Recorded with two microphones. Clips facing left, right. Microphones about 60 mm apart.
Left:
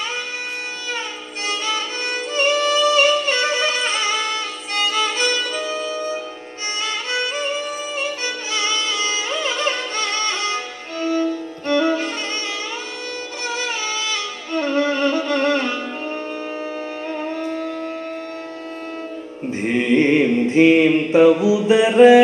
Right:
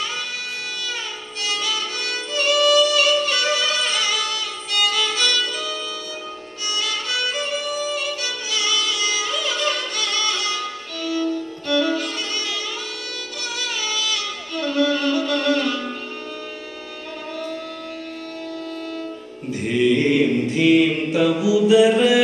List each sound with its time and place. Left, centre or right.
1.4 s music: left
13.6 s music: left
19.5 s mantra: left